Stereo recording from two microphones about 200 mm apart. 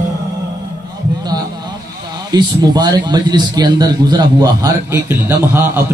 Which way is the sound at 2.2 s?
20° right (ahead or behind).